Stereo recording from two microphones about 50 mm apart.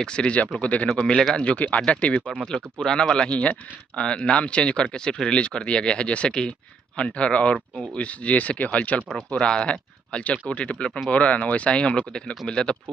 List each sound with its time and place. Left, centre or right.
0.0 s speech: centre
0.8 s speech: centre